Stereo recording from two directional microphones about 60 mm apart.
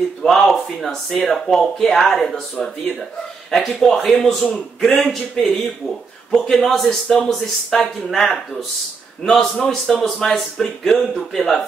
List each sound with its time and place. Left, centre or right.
0.3 s speech: centre